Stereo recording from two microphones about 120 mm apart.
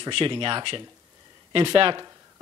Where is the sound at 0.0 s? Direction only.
45° right (ahead or behind).